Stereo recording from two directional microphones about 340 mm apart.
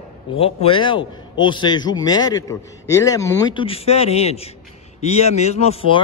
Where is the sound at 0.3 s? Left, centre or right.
Centre.